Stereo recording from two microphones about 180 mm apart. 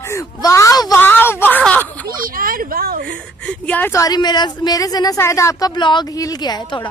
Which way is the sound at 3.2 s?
5° left (ahead or behind).